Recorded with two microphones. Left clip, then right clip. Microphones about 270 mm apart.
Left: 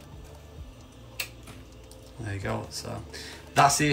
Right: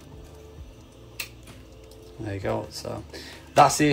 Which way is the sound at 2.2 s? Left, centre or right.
Centre.